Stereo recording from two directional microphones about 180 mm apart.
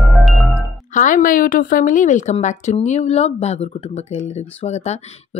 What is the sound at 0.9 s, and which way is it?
Speech, 45° left (ahead or behind).